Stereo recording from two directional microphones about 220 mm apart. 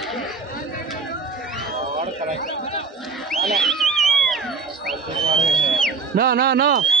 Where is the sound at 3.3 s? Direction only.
Centre (ahead or behind).